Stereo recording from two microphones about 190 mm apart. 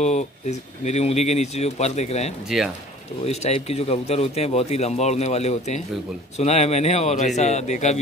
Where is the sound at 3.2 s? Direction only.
35° left (ahead or behind).